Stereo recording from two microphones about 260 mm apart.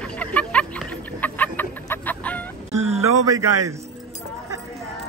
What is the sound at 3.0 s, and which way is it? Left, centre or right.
Speech, centre.